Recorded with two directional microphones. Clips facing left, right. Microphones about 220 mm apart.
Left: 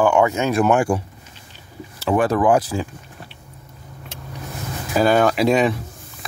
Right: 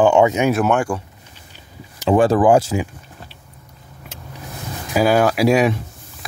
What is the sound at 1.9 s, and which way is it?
Speech, 25° right (ahead or behind).